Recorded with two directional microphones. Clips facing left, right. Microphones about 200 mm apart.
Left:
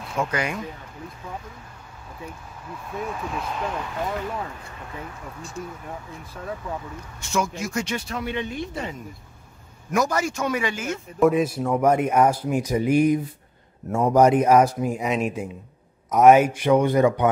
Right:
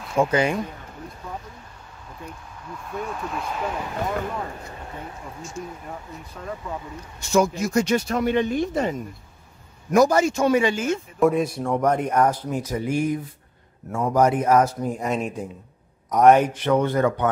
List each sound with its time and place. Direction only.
0.2 s speech: 30° right (ahead or behind)
2.2 s speech: 5° left (ahead or behind)
5.9 s speech: centre (ahead or behind)
7.2 s speech: 35° right (ahead or behind)
11.1 s speech: centre (ahead or behind)